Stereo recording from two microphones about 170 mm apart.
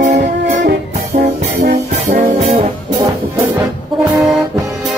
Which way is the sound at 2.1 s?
40° right (ahead or behind).